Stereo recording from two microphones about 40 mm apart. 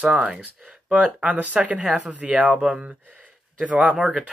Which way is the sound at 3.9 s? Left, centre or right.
Centre.